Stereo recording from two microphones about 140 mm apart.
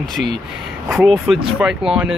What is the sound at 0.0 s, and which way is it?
Speech, centre (ahead or behind).